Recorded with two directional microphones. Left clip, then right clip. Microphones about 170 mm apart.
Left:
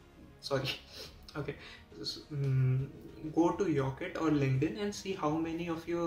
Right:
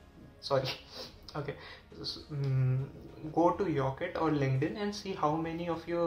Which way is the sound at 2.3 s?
25° left (ahead or behind).